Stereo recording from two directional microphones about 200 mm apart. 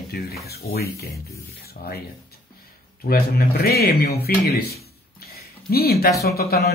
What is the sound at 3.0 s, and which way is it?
Speech, 50° left (ahead or behind).